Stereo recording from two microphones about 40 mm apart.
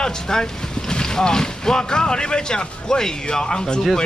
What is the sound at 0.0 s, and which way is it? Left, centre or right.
Speech, centre.